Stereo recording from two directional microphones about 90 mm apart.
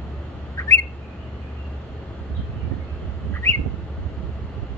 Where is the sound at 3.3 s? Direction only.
30° left (ahead or behind).